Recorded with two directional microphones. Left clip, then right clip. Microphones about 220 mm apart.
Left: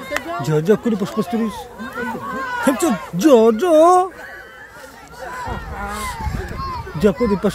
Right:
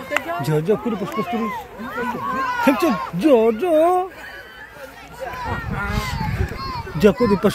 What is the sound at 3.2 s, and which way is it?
Speech, 30° left (ahead or behind).